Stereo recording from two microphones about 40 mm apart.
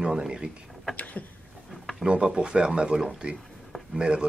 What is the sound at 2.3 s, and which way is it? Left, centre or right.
Speech, right.